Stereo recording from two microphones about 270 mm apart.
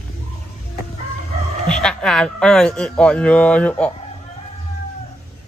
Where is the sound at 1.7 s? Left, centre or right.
Centre.